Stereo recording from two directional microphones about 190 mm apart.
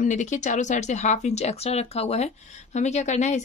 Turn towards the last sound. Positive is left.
turn(degrees=40)  # may be behind; listen again after turning